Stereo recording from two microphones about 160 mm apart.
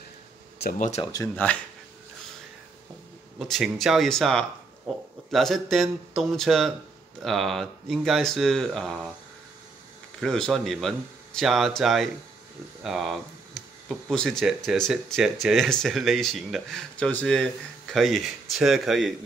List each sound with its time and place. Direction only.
0.7 s speech: 50° left (ahead or behind)
1.1 s speech: 15° left (ahead or behind)
3.3 s speech: centre (ahead or behind)
10.2 s speech: 5° left (ahead or behind)